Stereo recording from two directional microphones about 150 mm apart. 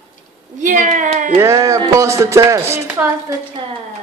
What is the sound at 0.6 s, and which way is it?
Speech, 60° right (ahead or behind).